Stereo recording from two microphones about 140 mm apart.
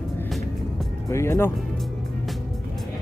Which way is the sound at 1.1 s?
20° left (ahead or behind).